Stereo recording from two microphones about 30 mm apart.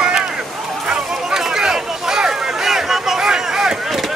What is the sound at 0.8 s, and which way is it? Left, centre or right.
Chatter, right.